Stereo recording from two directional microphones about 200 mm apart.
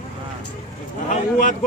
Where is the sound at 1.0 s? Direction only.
40° left (ahead or behind).